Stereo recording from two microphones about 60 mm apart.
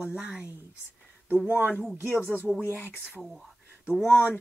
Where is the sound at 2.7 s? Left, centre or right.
Left.